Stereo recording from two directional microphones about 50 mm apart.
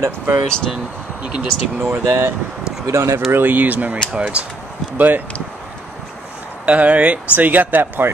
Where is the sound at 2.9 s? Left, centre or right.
Right.